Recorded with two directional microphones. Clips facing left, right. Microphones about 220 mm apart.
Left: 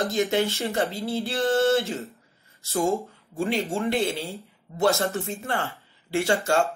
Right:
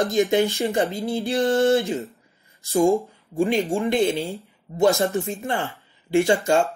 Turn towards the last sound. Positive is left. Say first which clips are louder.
# right 5 dB
turn(degrees=-15)  # may be behind; listen again after turning